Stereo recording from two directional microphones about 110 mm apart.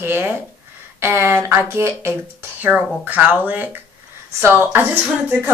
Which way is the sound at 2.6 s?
10° right (ahead or behind).